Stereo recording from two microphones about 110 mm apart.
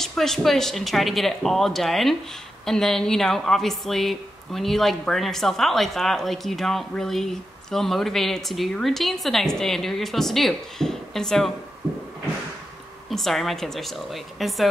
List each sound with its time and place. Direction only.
0.0 s speech: 5° left (ahead or behind)
11.8 s a sound: 25° right (ahead or behind)
13.1 s speech: centre (ahead or behind)